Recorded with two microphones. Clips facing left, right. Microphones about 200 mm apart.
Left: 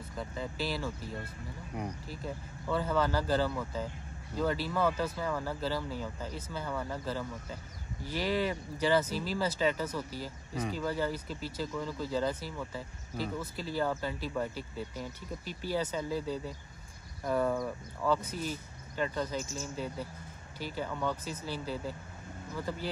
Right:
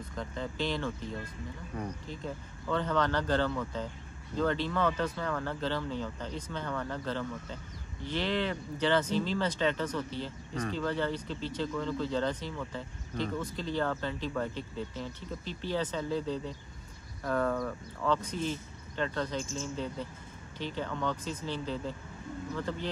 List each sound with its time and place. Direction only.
0.1 s speech: 5° left (ahead or behind)